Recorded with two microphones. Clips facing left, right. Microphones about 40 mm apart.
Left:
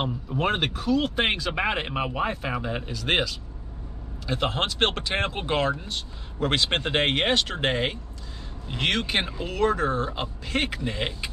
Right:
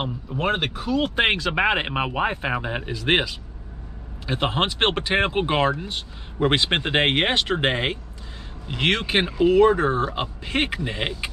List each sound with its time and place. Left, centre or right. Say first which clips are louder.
0.0 s speech: right 1 dB; centre; by 11.2 s right